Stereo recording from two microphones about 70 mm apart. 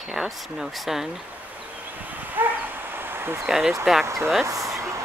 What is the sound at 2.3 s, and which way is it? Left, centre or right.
Bow-wow, right.